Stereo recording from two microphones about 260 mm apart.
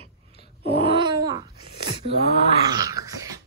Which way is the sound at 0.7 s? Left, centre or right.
Centre.